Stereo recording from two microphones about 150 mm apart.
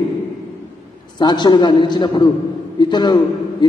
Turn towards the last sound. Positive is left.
turn(degrees=30)  # may be behind; listen again after turning